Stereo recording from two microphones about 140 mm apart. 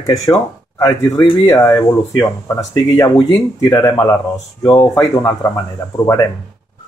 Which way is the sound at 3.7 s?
25° left (ahead or behind).